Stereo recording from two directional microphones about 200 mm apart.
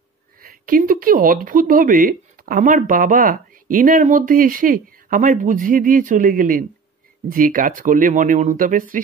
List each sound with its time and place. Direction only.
0.4 s speech: 45° right (ahead or behind)